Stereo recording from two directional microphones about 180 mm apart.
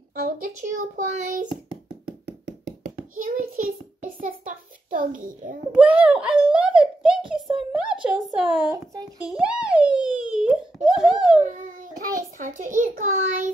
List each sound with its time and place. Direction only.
0.2 s a woman's voice: 50° right (ahead or behind)
2.0 s knock: 70° right (ahead or behind)
3.0 s hands: 50° right (ahead or behind)
5.7 s a child's voice: 5° right (ahead or behind)
8.7 s speech: 20° right (ahead or behind)
9.3 s a sound: 5° right (ahead or behind)
11.5 s a sound: 45° right (ahead or behind)
12.4 s a child's voice: 45° right (ahead or behind)